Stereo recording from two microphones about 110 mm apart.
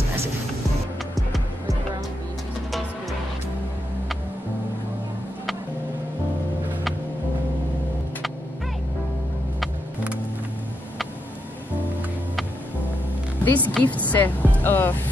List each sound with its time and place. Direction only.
13.4 s a woman's voice: 15° left (ahead or behind)